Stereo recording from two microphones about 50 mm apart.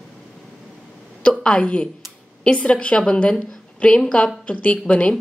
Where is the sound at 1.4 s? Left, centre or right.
Left.